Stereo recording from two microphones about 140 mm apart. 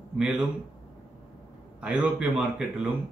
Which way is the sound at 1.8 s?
5° right (ahead or behind).